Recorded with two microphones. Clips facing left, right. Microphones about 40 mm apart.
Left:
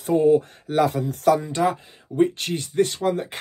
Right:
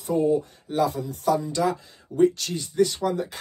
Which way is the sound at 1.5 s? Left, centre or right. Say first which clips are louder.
Left 2 dB; left.